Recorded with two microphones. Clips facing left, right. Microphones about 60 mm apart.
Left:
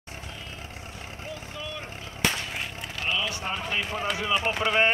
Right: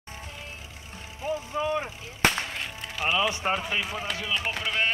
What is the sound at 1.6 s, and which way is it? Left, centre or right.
Speech, right.